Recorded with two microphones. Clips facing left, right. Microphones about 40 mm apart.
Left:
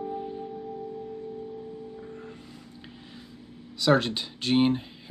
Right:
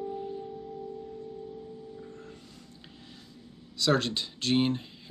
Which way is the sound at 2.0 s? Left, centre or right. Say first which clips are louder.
Left 4 dB; centre.